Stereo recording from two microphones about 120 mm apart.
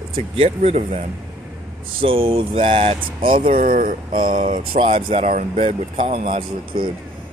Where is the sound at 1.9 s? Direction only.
50° right (ahead or behind).